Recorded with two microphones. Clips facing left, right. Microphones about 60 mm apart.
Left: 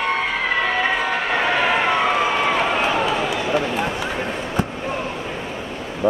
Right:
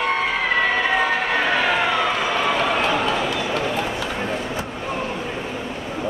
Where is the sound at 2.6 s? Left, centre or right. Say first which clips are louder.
Left 1 dB; centre.